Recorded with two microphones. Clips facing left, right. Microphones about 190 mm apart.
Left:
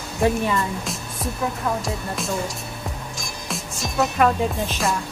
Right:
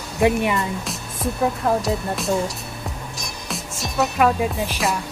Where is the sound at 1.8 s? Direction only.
Centre (ahead or behind).